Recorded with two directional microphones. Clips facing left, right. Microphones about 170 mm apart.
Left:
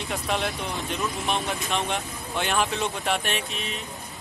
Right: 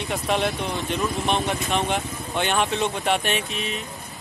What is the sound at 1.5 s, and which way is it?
Speech, centre (ahead or behind).